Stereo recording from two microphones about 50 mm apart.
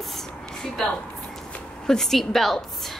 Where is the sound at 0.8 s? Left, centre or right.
Centre.